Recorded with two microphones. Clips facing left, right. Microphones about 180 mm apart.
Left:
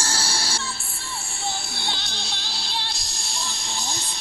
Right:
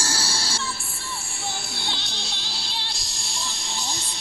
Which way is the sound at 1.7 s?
55° left (ahead or behind).